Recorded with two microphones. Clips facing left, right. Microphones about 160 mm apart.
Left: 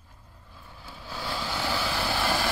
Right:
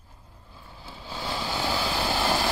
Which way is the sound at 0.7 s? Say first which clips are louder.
Right 1 dB; 25° right (ahead or behind).